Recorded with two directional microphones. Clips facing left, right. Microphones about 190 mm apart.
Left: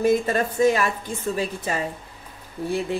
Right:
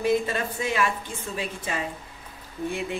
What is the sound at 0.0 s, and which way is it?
Speech, 45° left (ahead or behind).